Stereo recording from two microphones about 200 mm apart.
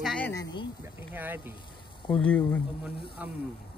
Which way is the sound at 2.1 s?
5° left (ahead or behind).